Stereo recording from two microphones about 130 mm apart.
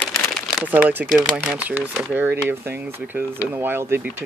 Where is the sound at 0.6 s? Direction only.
15° right (ahead or behind).